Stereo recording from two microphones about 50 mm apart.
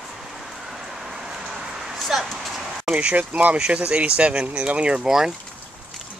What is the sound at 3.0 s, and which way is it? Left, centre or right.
Speech, right.